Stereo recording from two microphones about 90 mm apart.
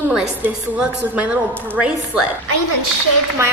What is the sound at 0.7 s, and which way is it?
A woman's voice, 15° right (ahead or behind).